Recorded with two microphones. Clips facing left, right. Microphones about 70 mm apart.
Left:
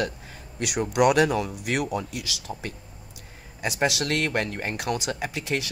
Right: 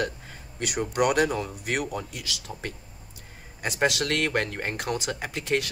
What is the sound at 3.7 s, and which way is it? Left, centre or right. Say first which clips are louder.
Speech: even; right.